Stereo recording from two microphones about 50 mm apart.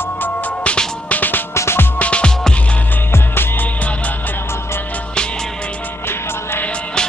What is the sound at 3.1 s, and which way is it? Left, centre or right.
Music, left.